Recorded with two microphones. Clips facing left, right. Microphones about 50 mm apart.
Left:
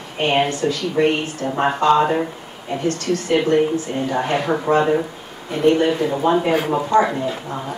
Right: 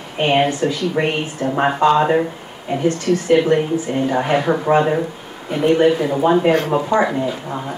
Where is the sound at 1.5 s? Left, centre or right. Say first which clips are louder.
Right 1 dB; centre.